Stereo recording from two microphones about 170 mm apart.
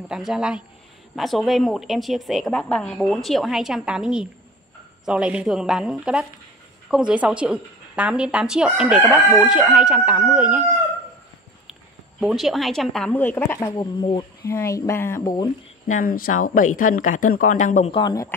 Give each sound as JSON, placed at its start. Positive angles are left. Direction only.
{"t": 0.1, "sound": "a woman's voice", "side_deg": -5}
{"t": 12.2, "sound": "a woman's voice", "side_deg": 0}
{"t": 13.6, "sound": "speech", "side_deg": 25}
{"t": 14.5, "sound": "speech", "side_deg": 15}
{"t": 15.9, "sound": "speech", "side_deg": 55}
{"t": 17.9, "sound": "speech", "side_deg": 25}